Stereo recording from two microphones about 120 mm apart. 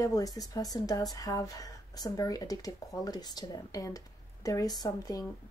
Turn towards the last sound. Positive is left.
turn(degrees=30)  # may be behind; listen again after turning